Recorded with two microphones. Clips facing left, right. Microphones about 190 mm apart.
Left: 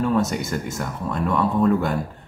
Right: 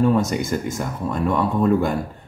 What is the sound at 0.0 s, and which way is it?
Speech, centre (ahead or behind).